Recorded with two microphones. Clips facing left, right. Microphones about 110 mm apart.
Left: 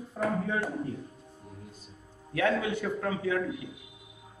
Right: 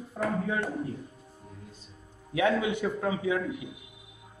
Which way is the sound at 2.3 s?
15° right (ahead or behind).